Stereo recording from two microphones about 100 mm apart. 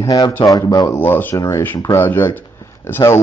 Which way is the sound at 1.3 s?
30° left (ahead or behind).